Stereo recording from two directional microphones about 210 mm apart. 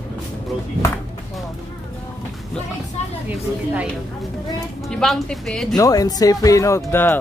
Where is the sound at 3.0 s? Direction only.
35° left (ahead or behind).